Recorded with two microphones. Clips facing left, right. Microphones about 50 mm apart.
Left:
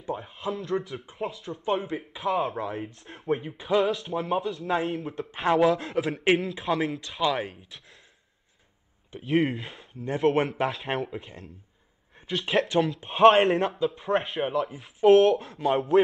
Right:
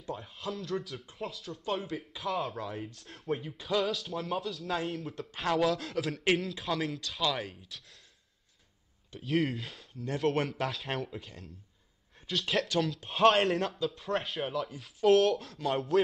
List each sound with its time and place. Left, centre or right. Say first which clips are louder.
0.0 s speech: left 6 dB; left
3.5 s speech: left 7 dB; left
3.8 s speech: left 6 dB; centre
5.1 s speech: left 7 dB; left
5.6 s speech: left 6 dB; centre
9.2 s speech: left 5 dB; centre
9.9 s speech: left 6 dB; left